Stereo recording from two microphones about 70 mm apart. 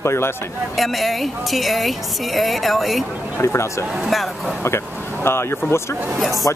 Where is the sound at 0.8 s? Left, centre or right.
Centre.